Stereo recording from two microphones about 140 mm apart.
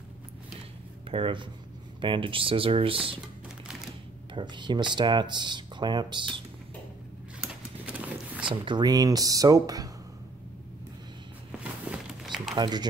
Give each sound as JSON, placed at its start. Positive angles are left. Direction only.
{"t": 1.1, "sound": "speech", "side_deg": -35}
{"t": 4.3, "sound": "speech", "side_deg": -35}
{"t": 7.3, "sound": "a sound", "side_deg": -10}
{"t": 8.5, "sound": "speech", "side_deg": -35}
{"t": 11.9, "sound": "a sound", "side_deg": 0}
{"t": 12.5, "sound": "speech", "side_deg": -30}